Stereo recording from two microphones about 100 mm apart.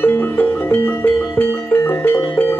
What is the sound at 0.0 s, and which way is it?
Music, 20° left (ahead or behind).